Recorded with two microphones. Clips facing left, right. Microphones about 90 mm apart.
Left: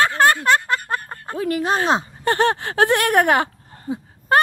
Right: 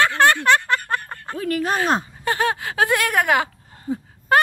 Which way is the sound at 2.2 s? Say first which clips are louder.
Left 5 dB; 45° left (ahead or behind).